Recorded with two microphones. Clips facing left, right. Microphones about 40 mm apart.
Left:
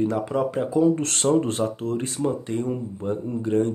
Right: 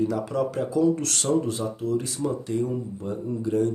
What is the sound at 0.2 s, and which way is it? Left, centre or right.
Speech, left.